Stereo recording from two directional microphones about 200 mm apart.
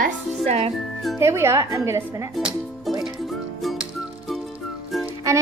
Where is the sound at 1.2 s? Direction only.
15° right (ahead or behind).